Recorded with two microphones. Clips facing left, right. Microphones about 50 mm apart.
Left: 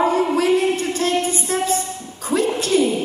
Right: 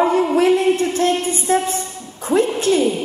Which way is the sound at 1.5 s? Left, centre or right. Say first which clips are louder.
Right 2 dB; right.